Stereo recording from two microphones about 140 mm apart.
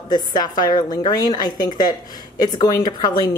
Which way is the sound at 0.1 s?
30° left (ahead or behind).